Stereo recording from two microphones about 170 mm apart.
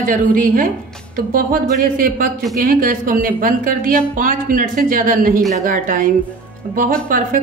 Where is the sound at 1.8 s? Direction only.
55° right (ahead or behind).